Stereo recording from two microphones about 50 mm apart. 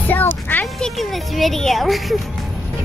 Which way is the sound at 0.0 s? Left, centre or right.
Left.